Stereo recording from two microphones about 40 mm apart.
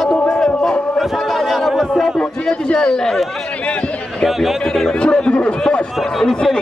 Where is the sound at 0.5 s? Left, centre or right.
Left.